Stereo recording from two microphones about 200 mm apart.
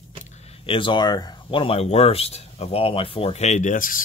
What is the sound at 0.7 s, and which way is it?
Speech, 25° left (ahead or behind).